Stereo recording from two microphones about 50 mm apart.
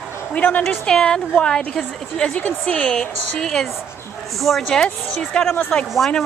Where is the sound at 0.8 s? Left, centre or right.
Centre.